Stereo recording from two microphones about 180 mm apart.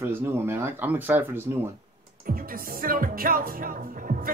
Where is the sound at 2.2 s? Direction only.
50° right (ahead or behind).